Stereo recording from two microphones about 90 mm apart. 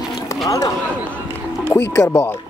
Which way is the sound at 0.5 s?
40° left (ahead or behind).